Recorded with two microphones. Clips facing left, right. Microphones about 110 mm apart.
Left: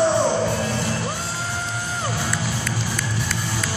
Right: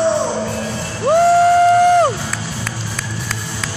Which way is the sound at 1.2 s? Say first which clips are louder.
Right 19 dB; 80° right.